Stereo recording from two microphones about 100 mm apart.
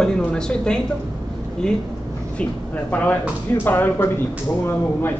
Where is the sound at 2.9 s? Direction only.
15° left (ahead or behind).